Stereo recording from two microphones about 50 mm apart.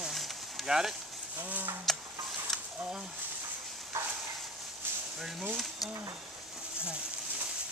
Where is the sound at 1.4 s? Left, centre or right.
Right.